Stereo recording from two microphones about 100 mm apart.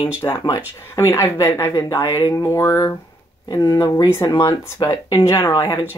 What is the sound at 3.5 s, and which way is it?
Speech, 35° left (ahead or behind).